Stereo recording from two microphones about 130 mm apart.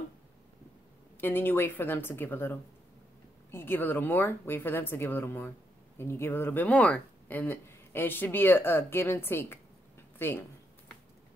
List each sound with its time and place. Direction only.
1.2 s speech: 15° left (ahead or behind)